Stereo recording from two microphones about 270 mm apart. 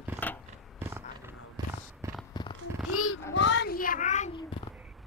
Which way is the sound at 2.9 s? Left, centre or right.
Left.